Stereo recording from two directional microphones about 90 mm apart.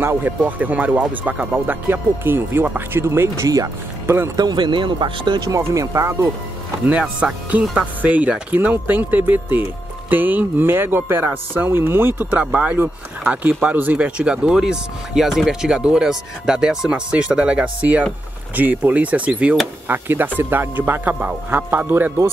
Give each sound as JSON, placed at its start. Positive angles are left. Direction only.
{"t": 0.0, "sound": "speech", "side_deg": -20}
{"t": 3.3, "sound": "speech", "side_deg": -40}
{"t": 4.4, "sound": "speech", "side_deg": -55}
{"t": 5.5, "sound": "speech", "side_deg": -35}
{"t": 6.9, "sound": "speech", "side_deg": -15}